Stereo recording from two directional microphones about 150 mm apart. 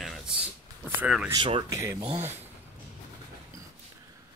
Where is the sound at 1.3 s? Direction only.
35° right (ahead or behind).